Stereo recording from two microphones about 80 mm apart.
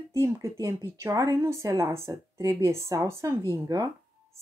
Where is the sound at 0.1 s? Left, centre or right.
Right.